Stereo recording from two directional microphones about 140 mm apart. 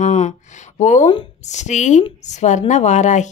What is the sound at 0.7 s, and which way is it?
A woman's voice, 55° left (ahead or behind).